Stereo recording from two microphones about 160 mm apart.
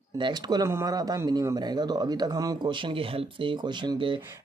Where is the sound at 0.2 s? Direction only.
25° right (ahead or behind).